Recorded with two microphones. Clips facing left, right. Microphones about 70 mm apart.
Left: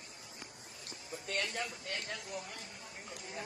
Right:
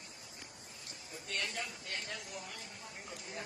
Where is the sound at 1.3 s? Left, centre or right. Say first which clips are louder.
Left 3 dB; left.